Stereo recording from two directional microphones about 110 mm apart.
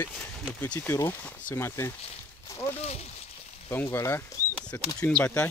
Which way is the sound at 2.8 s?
70° left (ahead or behind).